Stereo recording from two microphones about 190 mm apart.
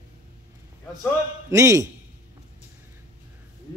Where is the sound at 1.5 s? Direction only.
15° right (ahead or behind).